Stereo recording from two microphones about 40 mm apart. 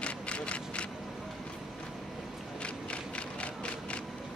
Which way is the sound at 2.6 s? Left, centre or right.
Left.